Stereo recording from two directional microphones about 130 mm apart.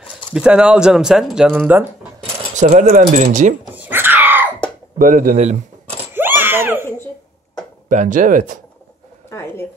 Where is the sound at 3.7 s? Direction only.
15° right (ahead or behind).